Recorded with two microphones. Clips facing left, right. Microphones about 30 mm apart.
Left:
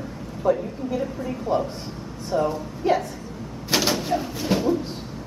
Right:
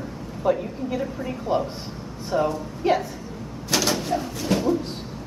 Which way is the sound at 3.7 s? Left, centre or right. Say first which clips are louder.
Left 1 dB; centre.